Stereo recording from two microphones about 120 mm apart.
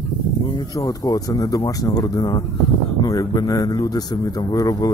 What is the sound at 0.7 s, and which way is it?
A man's voice, 30° left (ahead or behind).